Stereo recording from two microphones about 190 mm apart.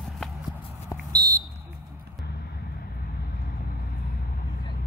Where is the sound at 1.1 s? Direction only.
50° right (ahead or behind).